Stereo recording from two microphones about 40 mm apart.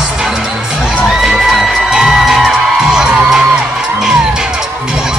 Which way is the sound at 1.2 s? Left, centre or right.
Centre.